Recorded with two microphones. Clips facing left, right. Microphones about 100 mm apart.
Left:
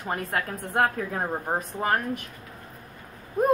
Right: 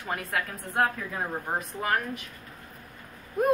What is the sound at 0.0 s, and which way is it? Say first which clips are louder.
A woman's voice: left 2 dB; 35° left (ahead or behind).